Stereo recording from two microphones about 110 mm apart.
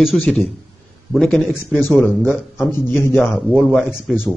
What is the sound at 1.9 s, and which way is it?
A man's voice, 15° left (ahead or behind).